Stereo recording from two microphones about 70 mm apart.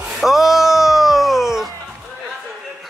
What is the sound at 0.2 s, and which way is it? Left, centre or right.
Music, centre.